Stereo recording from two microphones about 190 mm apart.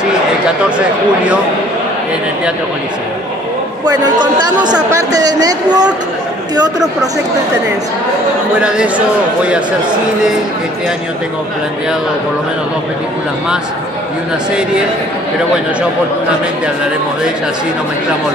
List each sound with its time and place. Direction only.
3.8 s a woman's voice: 20° right (ahead or behind)
8.5 s a man's voice: 5° right (ahead or behind)